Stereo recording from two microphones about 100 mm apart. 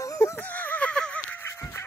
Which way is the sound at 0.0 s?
30° left (ahead or behind).